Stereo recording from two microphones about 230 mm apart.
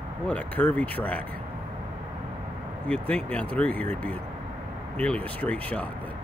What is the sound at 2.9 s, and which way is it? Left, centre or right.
Speech, centre.